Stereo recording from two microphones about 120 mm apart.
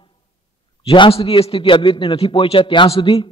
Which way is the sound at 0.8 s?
45° left (ahead or behind).